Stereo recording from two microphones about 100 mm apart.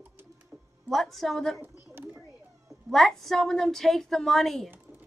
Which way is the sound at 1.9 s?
20° right (ahead or behind).